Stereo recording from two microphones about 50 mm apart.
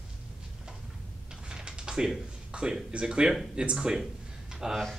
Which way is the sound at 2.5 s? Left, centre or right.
Centre.